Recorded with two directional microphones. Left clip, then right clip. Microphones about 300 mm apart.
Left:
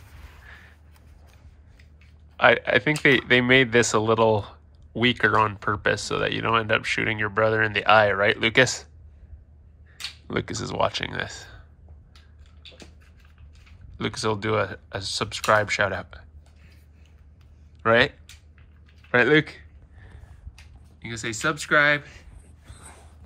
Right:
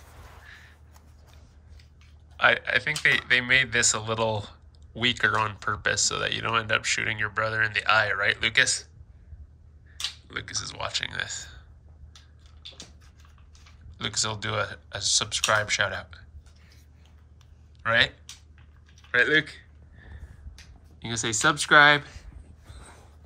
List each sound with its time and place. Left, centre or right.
0.5 s a sound: centre
2.3 s speech: centre
10.3 s speech: centre
13.9 s speech: centre
17.8 s speech: centre
19.1 s speech: centre
21.0 s speech: centre